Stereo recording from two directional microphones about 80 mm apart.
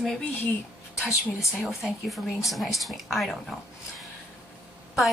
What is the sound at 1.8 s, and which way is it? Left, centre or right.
Speech, centre.